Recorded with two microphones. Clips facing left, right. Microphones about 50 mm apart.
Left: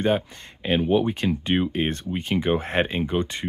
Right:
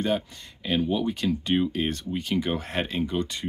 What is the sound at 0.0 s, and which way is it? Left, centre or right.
Speech, left.